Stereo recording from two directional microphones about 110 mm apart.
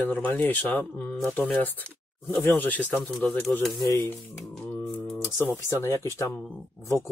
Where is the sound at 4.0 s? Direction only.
20° left (ahead or behind).